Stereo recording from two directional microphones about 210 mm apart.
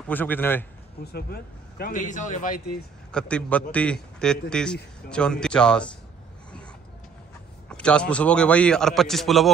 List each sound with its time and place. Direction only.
0.1 s a man's voice: 10° left (ahead or behind)
1.0 s speech: 50° left (ahead or behind)
3.1 s a man's voice: 5° left (ahead or behind)
7.7 s a man's voice: 5° left (ahead or behind)